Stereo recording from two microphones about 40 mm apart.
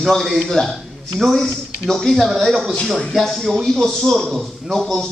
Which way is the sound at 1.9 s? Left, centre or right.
Centre.